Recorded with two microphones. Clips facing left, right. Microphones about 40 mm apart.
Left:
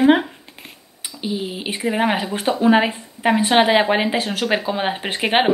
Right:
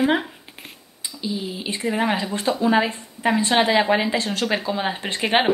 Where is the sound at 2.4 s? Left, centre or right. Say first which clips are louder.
Left 4 dB; left.